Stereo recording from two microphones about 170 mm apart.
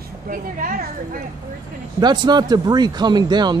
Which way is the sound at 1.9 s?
25° right (ahead or behind).